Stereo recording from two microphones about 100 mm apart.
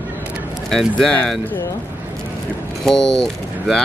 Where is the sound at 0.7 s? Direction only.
5° left (ahead or behind).